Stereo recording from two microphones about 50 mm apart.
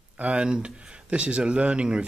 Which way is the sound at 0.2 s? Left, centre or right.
Right.